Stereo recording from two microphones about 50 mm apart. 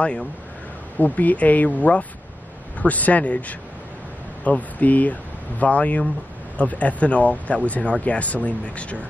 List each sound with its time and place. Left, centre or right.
0.9 s speech: left